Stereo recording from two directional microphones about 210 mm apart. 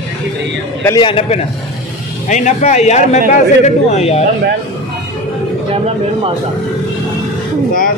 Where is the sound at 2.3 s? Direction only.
35° left (ahead or behind).